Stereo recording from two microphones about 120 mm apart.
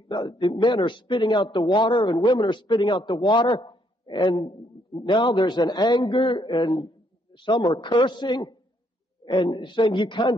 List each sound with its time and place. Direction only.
0.1 s a man's voice: 40° left (ahead or behind)